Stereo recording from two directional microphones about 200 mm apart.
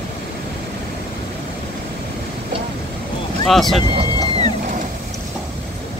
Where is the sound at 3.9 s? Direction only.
30° right (ahead or behind).